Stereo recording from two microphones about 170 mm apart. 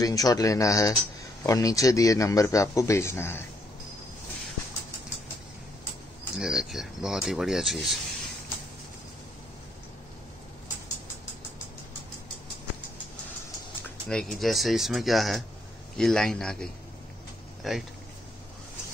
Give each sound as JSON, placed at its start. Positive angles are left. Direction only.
{"t": 0.0, "sound": "a man's voice", "side_deg": 20}
{"t": 6.3, "sound": "speech", "side_deg": -5}
{"t": 13.8, "sound": "speech", "side_deg": 5}
{"t": 17.6, "sound": "speech", "side_deg": 0}